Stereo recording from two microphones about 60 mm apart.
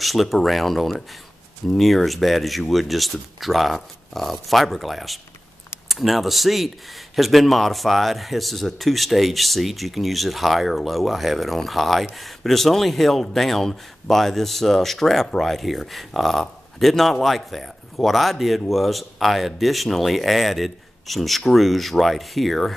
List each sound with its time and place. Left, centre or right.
0.0 s speech: centre